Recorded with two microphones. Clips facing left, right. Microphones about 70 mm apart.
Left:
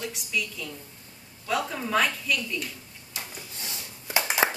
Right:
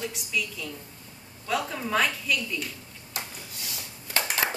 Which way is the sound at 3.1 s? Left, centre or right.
Right.